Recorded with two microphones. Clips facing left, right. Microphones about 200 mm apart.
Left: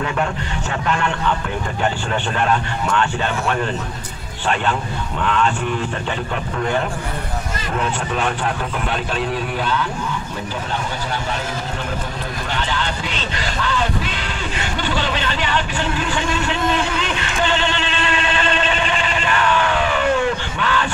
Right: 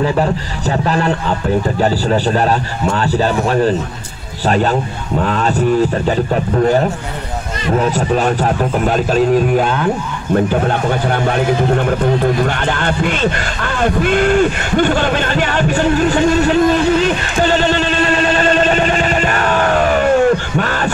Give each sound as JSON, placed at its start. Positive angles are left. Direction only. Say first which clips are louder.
{"t": 0.0, "sound": "a man's voice", "louder": "right 7 dB", "side_deg": -35}